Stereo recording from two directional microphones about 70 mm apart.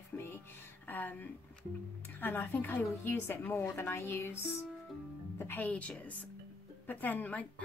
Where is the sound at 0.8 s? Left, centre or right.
Left.